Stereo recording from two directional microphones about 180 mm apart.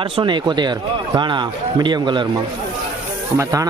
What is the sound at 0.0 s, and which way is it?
A man's voice, 25° right (ahead or behind).